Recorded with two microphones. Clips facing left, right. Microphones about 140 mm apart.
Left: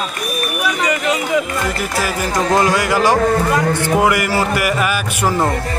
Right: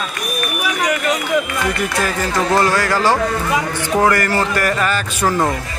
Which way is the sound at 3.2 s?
45° left (ahead or behind).